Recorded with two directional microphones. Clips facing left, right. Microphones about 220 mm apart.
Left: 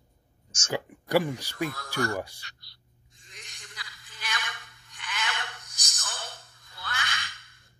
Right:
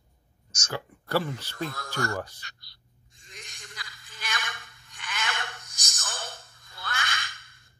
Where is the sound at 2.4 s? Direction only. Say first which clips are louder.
Right 1 dB; 45° right (ahead or behind).